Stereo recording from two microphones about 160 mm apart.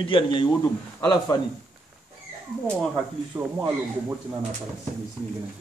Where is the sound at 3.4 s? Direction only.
15° right (ahead or behind).